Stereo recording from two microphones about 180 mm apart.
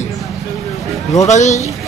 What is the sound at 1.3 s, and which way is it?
Speech, 40° left (ahead or behind).